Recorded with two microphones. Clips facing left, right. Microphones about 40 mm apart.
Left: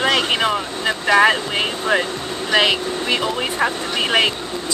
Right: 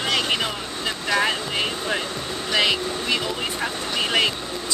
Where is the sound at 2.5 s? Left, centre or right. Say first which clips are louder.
Left 5 dB; left.